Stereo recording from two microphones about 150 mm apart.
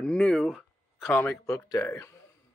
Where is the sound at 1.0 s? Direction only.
15° left (ahead or behind).